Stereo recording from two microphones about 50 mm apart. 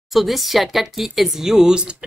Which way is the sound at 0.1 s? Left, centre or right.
Centre.